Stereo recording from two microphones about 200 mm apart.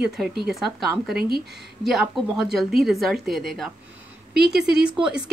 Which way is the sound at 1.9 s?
Centre (ahead or behind).